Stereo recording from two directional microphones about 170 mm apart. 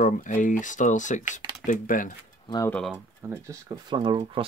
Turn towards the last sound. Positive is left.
turn(degrees=-25)  # may be behind; listen again after turning